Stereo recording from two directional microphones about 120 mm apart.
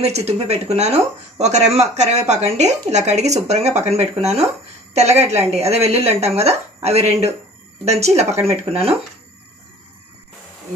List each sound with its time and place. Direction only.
0.0 s speech: 60° right (ahead or behind)